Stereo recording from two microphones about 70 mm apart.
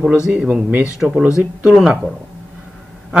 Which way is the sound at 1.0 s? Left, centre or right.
Centre.